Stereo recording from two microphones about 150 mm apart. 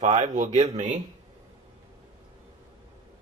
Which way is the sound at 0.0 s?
55° right (ahead or behind).